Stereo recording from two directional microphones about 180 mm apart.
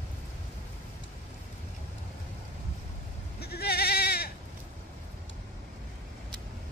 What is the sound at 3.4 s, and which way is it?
Goat, 60° left (ahead or behind).